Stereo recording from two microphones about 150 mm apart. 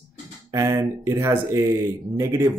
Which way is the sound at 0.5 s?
20° right (ahead or behind).